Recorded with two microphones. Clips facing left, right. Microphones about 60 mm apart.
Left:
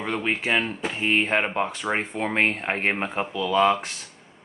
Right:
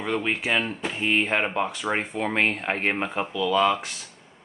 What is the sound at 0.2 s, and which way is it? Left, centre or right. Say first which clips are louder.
Speech: left 1 dB; left.